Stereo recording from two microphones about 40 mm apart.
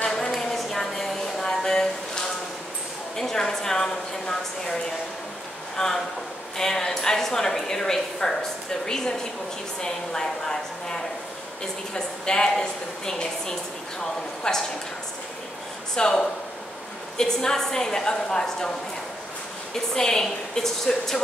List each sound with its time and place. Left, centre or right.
0.0 s a sound: centre
3.2 s a woman's voice: centre
5.8 s a woman's voice: centre
15.9 s a woman's voice: centre
19.7 s a woman's voice: centre